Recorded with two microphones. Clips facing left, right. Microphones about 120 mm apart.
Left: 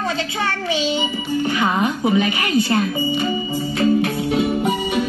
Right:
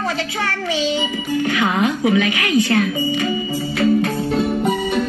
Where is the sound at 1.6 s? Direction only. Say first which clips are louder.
Right 2 dB; 40° left (ahead or behind).